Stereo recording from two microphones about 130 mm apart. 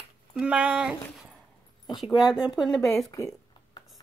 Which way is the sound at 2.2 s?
5° right (ahead or behind).